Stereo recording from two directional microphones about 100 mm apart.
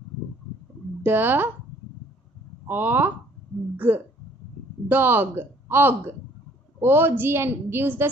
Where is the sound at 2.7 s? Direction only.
20° right (ahead or behind).